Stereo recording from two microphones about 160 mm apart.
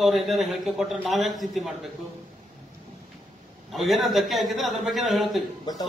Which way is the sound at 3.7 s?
Centre (ahead or behind).